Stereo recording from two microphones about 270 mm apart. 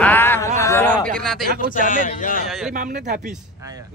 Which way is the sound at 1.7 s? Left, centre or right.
Left.